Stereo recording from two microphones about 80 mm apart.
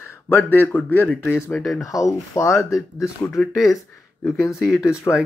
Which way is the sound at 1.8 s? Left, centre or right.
Left.